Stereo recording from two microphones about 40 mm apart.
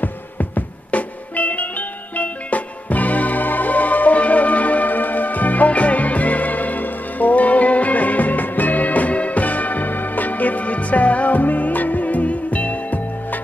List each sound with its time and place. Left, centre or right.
0.0 s music: left